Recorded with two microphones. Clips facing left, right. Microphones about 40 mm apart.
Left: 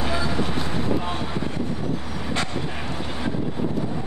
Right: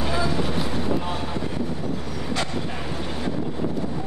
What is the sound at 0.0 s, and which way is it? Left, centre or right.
Vehicle, centre.